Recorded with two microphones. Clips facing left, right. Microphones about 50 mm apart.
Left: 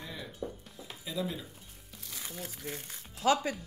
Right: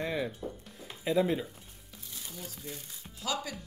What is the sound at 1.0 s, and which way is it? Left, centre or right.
Speech, right.